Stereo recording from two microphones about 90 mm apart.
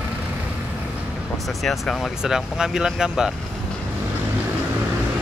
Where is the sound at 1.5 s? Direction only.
Centre (ahead or behind).